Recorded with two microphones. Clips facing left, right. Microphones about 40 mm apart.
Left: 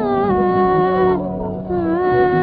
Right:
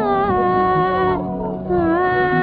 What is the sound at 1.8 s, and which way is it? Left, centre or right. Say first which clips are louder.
Music: left 2 dB; right.